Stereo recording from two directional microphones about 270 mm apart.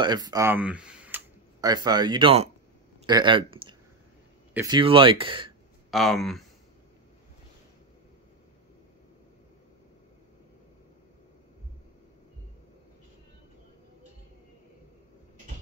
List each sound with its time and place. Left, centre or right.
0.0 s speech: centre
5.9 s speech: centre